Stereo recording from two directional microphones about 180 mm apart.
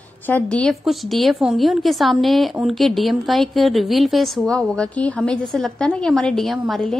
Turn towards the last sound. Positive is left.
turn(degrees=0)  # may be behind; listen again after turning